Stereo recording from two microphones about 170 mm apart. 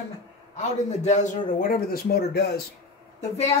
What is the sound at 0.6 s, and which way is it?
Speech, 45° left (ahead or behind).